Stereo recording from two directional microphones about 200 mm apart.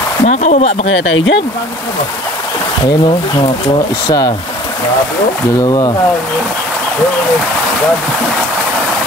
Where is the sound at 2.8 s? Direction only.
25° left (ahead or behind).